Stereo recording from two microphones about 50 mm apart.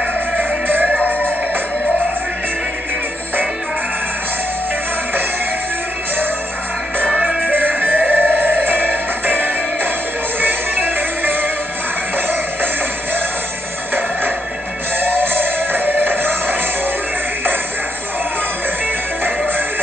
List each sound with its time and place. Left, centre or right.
7.2 s music: centre
8.1 s music: right
15.0 s music: right